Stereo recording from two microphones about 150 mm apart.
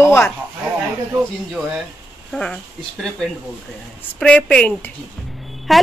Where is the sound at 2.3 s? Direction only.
5° left (ahead or behind).